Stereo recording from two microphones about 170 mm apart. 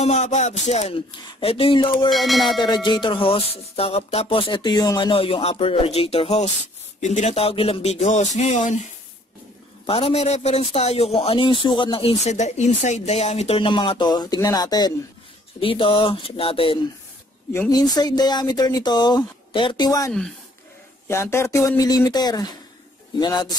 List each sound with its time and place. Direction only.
0.0 s a man's voice: 40° left (ahead or behind)
2.0 s a sound: centre (ahead or behind)
2.6 s a man's voice: 25° left (ahead or behind); by 8.8 s 45° left (ahead or behind)
9.8 s a man's voice: 35° left (ahead or behind)
17.5 s speech: 20° left (ahead or behind)
20.1 s a sound: 5° left (ahead or behind)
21.1 s speech: 15° left (ahead or behind)